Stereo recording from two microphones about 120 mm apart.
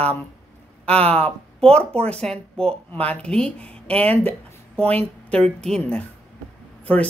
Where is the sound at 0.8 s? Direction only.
10° left (ahead or behind).